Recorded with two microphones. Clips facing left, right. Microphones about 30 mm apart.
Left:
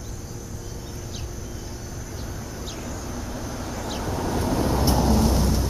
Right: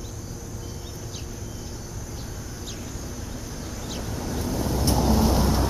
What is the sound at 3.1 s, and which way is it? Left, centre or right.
Vehicle, left.